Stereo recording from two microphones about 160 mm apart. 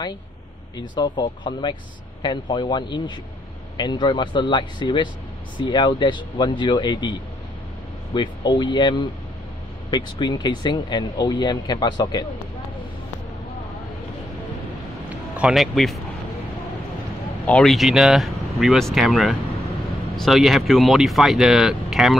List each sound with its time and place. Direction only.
0.7 s speech: 25° left (ahead or behind)
15.3 s speech: 5° right (ahead or behind)
17.5 s speech: 5° left (ahead or behind)